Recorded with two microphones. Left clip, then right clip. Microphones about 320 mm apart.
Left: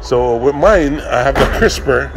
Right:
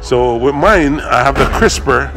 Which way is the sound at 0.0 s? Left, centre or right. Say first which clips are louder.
Right 1 dB; centre.